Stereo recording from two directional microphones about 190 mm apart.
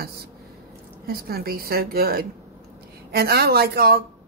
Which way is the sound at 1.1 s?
55° right (ahead or behind).